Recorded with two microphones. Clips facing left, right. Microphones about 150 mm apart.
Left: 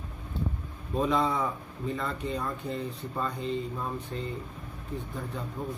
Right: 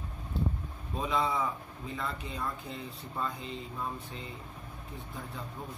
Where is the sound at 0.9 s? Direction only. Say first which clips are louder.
Left 4 dB; centre (ahead or behind).